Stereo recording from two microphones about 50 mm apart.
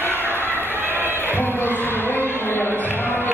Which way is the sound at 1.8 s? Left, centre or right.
Left.